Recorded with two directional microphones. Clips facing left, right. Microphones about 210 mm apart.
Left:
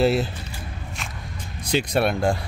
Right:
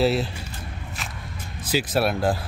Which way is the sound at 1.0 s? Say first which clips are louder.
Even; centre (ahead or behind).